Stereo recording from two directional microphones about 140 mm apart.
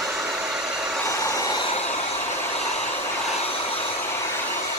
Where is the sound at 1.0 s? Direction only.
20° left (ahead or behind).